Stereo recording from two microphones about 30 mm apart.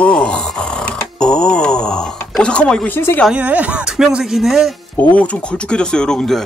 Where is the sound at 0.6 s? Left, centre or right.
Left.